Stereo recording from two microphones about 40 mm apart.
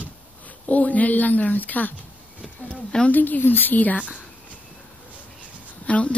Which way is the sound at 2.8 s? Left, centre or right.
Left.